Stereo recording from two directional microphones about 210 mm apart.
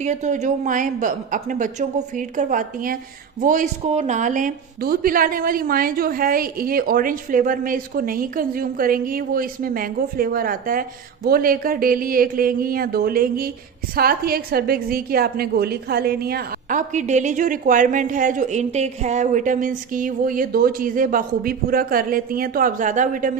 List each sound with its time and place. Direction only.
0.0 s a woman's voice: 35° right (ahead or behind)